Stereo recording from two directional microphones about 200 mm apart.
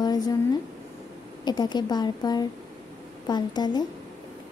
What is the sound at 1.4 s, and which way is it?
Speech, 20° left (ahead or behind).